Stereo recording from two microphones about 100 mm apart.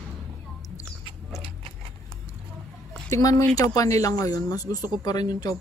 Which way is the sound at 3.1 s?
35° left (ahead or behind).